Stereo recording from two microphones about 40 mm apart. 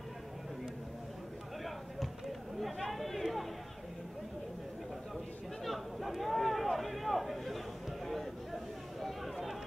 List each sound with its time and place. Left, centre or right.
2.6 s chatter: centre
5.6 s a sound: centre
9.0 s chatter: centre